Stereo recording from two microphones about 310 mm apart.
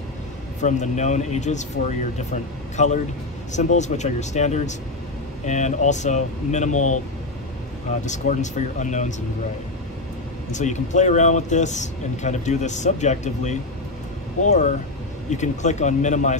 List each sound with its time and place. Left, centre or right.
0.6 s speech: left
8.0 s speech: left
10.5 s speech: left